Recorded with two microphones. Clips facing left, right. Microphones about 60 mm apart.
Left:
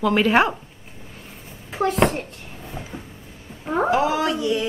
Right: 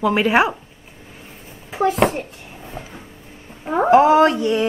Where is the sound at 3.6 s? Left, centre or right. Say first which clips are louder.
Right 3 dB; centre.